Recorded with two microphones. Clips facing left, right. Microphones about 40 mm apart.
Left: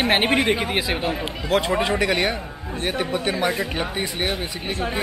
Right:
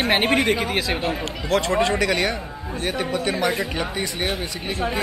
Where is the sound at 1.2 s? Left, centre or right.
Centre.